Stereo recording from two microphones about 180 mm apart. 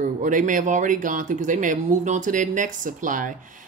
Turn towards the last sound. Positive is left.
turn(degrees=-50)  # may be behind; listen again after turning